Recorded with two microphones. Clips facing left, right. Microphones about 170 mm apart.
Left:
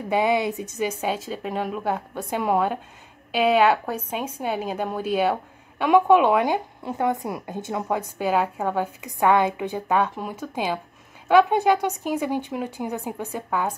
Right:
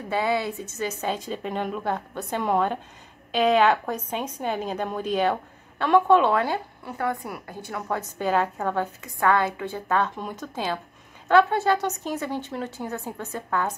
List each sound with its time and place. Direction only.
0.1 s a woman's voice: 15° left (ahead or behind)